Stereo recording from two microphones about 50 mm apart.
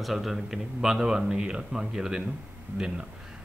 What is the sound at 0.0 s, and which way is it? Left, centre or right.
Speech, centre.